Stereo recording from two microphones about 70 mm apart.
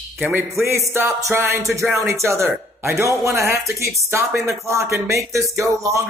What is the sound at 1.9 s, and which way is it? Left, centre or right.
Speech, right.